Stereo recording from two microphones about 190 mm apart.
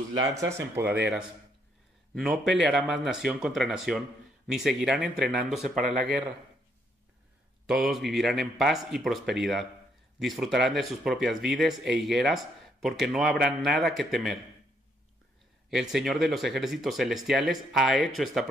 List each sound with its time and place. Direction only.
0.2 s speech: 15° right (ahead or behind); by 5.6 s centre (ahead or behind)
5.8 s speech: 40° right (ahead or behind)
7.6 s speech: centre (ahead or behind)
15.7 s speech: centre (ahead or behind)